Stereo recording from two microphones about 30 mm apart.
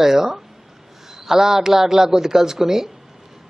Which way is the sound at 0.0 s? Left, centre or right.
Centre.